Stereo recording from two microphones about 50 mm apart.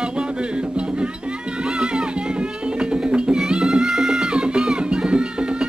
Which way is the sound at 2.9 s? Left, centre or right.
Centre.